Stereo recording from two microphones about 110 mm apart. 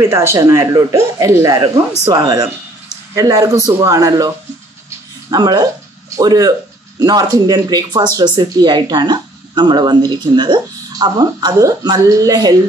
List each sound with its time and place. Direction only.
0.0 s speech: 25° right (ahead or behind)
5.3 s speech: 35° right (ahead or behind)